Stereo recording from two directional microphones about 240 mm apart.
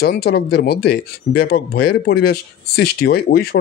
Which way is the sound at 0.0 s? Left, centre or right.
Left.